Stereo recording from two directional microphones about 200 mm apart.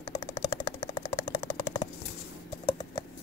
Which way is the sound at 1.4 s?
20° left (ahead or behind).